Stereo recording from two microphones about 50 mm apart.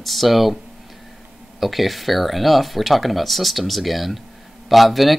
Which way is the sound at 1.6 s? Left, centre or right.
Centre.